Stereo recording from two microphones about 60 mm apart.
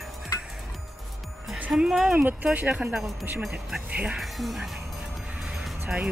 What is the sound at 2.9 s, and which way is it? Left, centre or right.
Speech, centre.